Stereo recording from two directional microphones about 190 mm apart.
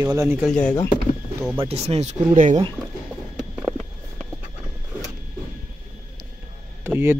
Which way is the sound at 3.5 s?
Centre (ahead or behind).